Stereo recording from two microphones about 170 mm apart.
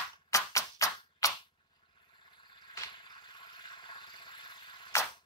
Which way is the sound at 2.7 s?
20° left (ahead or behind).